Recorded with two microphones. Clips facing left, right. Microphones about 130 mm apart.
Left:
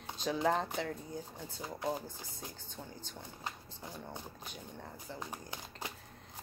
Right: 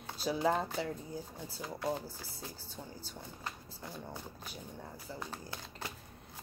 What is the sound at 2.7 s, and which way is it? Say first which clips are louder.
Speech: right 1 dB; 5° right (ahead or behind).